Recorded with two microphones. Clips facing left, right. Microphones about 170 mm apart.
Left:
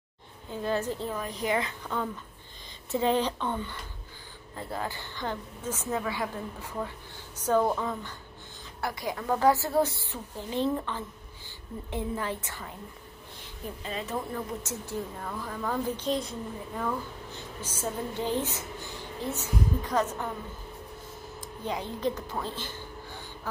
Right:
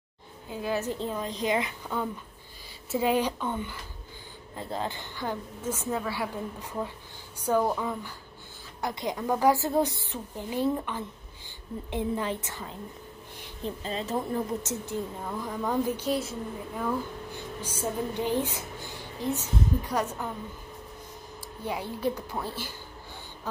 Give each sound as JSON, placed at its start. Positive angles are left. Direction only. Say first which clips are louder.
{"t": 0.6, "sound": "speech", "louder": "left 1 dB", "side_deg": -10}
{"t": 0.8, "sound": "a woman's voice", "louder": "right 1 dB", "side_deg": -20}
{"t": 4.6, "sound": "a woman's voice", "louder": "right 2 dB", "side_deg": -20}
{"t": 21.4, "sound": "speech", "louder": "even", "side_deg": -10}